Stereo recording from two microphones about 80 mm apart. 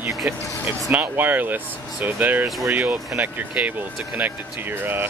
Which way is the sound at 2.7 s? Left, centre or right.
Right.